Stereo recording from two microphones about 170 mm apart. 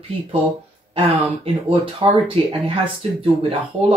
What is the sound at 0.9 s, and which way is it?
Speech, 30° right (ahead or behind).